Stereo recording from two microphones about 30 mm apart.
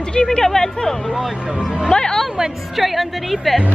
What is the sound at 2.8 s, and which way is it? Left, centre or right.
Speech, centre.